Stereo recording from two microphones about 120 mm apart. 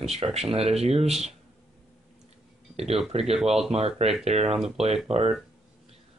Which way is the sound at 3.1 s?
60° right (ahead or behind).